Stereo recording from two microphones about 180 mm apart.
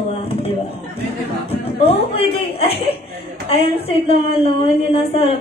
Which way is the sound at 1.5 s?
30° left (ahead or behind).